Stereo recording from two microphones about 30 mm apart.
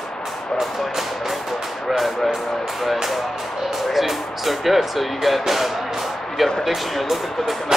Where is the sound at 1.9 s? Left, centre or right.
Centre.